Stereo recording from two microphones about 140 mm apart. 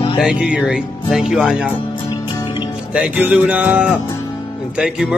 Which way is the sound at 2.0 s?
30° left (ahead or behind).